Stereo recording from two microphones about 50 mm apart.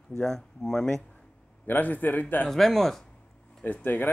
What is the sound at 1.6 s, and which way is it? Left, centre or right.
Speech, left.